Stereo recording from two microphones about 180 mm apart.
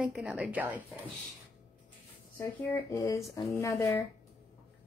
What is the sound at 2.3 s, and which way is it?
Speech, 15° left (ahead or behind).